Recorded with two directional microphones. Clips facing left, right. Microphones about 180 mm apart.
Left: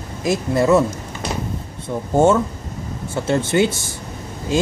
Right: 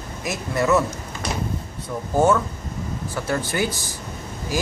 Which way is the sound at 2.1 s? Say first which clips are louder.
Left 4 dB; 25° left (ahead or behind).